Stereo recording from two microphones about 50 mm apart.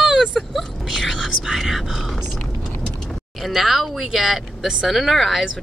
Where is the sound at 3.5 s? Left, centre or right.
Centre.